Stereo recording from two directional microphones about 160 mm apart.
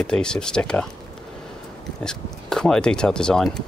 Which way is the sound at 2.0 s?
5° left (ahead or behind).